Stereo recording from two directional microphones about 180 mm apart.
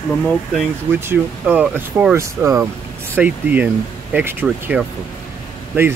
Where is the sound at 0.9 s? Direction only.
10° right (ahead or behind).